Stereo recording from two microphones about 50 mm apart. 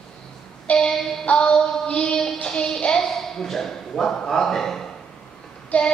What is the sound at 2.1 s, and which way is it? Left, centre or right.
Speech, centre.